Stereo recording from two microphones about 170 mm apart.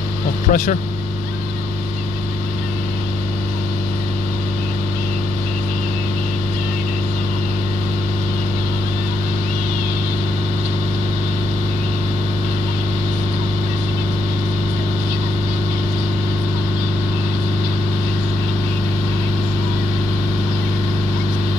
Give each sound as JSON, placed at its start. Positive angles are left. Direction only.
{"t": 0.5, "sound": "speech", "side_deg": 55}